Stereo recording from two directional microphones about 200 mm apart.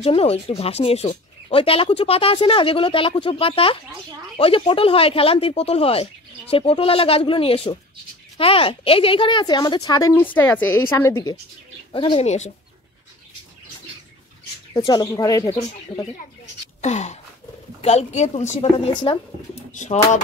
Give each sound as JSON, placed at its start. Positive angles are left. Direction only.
{"t": 0.0, "sound": "speech", "side_deg": 30}
{"t": 11.9, "sound": "speech", "side_deg": 25}
{"t": 14.7, "sound": "speech", "side_deg": 25}
{"t": 16.8, "sound": "a woman's voice", "side_deg": 35}